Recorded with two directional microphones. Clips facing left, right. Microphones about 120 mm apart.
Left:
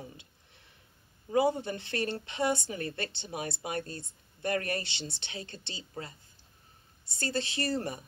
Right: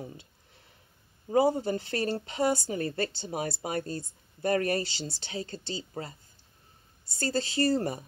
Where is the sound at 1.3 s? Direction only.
30° right (ahead or behind).